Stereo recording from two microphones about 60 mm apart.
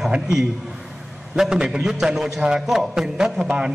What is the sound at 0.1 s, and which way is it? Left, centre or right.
A man's voice, centre.